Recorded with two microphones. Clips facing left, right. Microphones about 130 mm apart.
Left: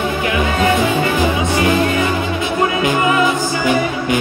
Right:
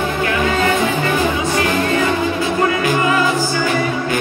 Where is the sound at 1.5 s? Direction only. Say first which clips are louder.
Left 2 dB; 20° left (ahead or behind).